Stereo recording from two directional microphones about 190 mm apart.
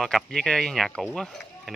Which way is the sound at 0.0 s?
5° left (ahead or behind).